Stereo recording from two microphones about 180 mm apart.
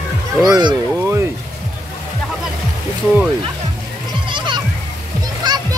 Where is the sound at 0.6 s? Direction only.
20° right (ahead or behind).